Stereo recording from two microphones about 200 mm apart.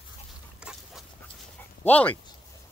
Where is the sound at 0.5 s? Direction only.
5° right (ahead or behind).